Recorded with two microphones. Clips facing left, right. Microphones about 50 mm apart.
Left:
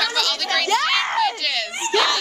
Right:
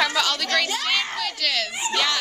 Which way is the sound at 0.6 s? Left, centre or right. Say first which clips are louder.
Left 7 dB; left.